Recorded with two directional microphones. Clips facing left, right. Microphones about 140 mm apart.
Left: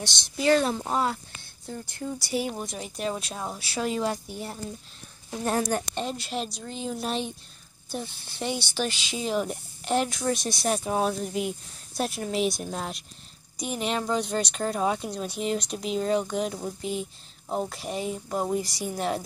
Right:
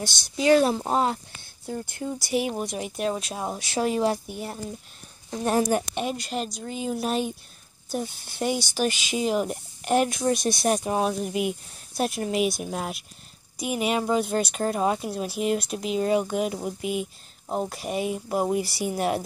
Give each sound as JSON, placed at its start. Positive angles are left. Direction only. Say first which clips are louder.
{"t": 0.0, "sound": "speech", "louder": "right 2 dB", "side_deg": 0}
{"t": 0.8, "sound": "speech", "louder": "right 3 dB", "side_deg": -25}
{"t": 1.7, "sound": "speech", "louder": "right 3 dB", "side_deg": -10}
{"t": 2.7, "sound": "speech", "louder": "right 4 dB", "side_deg": -5}
{"t": 3.3, "sound": "speech", "louder": "right 4 dB", "side_deg": -15}
{"t": 6.1, "sound": "speech", "louder": "right 2 dB", "side_deg": 0}
{"t": 8.8, "sound": "speech", "louder": "right 5 dB", "side_deg": -50}
{"t": 9.1, "sound": "speech", "louder": "right 3 dB", "side_deg": -10}
{"t": 10.3, "sound": "speech", "louder": "right 5 dB", "side_deg": -50}
{"t": 10.6, "sound": "speech", "louder": "right 3 dB", "side_deg": -15}
{"t": 10.9, "sound": "speech", "louder": "right 1 dB", "side_deg": -5}